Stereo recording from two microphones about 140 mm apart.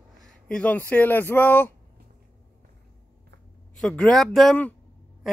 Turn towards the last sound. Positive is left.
turn(degrees=5)  # may be behind; listen again after turning